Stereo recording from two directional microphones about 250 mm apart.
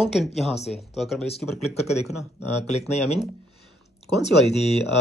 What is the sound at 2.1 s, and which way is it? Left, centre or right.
Speech, left.